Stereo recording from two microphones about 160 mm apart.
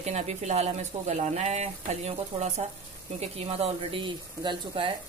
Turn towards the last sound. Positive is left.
turn(degrees=-35)  # may be behind; listen again after turning